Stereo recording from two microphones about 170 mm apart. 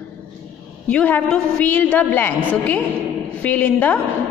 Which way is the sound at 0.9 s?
5° left (ahead or behind).